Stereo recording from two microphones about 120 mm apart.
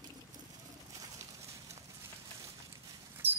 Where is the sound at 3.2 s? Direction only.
15° right (ahead or behind).